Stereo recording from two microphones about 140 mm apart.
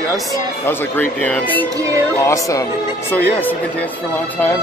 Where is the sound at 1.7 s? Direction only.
25° right (ahead or behind).